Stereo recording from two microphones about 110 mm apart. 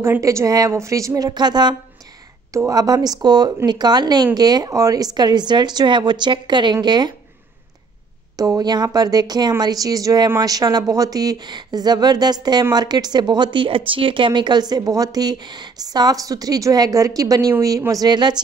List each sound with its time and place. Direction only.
0.0 s a woman's voice: 25° right (ahead or behind); by 1.8 s 40° right (ahead or behind)
2.5 s speech: 30° right (ahead or behind)
8.4 s speech: 35° right (ahead or behind)